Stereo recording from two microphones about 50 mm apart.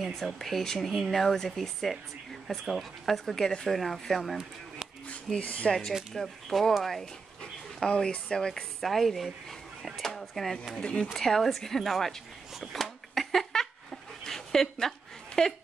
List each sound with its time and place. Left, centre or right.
0.0 s speech: centre
5.4 s speech: left
6.1 s a woman's voice: centre
7.8 s a woman's voice: centre
10.8 s speech: centre
11.1 s a woman's voice: centre
12.8 s a sound: centre